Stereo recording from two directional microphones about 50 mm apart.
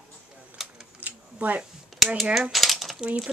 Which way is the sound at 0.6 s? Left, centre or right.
Centre.